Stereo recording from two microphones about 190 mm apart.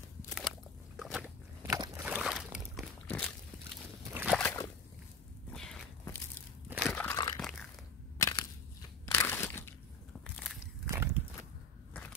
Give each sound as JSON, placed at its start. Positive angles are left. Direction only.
{"t": 0.3, "sound": "a sound", "side_deg": 0}
{"t": 2.0, "sound": "boat", "side_deg": -5}
{"t": 3.1, "sound": "a sound", "side_deg": 5}
{"t": 4.1, "sound": "slosh", "side_deg": -10}
{"t": 4.4, "sound": "slosh", "side_deg": 15}
{"t": 5.5, "sound": "walk", "side_deg": 5}
{"t": 6.7, "sound": "crunch", "side_deg": 0}
{"t": 7.3, "sound": "a sound", "side_deg": 0}
{"t": 8.2, "sound": "crushing", "side_deg": 15}
{"t": 9.0, "sound": "crunch", "side_deg": 15}
{"t": 10.2, "sound": "biting", "side_deg": 0}
{"t": 10.9, "sound": "walk", "side_deg": -10}